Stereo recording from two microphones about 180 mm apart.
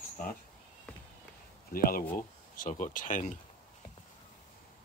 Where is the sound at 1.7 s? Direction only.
55° left (ahead or behind).